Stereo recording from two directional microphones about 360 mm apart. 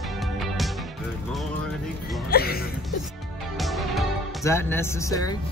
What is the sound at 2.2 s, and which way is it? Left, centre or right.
Speech, left.